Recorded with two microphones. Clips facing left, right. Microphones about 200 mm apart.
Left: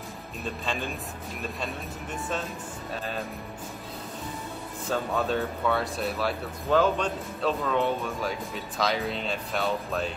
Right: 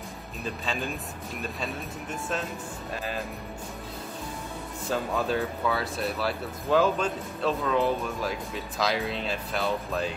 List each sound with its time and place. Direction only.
0.4 s speech: centre (ahead or behind)
4.8 s speech: 5° right (ahead or behind)